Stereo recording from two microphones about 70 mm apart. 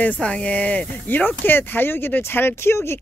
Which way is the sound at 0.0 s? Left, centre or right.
Centre.